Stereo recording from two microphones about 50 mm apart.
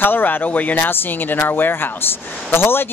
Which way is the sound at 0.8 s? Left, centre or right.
Left.